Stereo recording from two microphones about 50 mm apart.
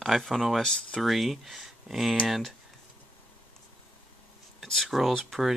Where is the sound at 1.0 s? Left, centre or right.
Centre.